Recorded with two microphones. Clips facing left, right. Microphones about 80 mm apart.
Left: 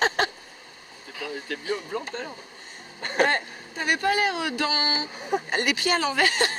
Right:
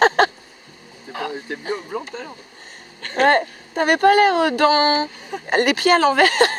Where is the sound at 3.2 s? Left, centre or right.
Right.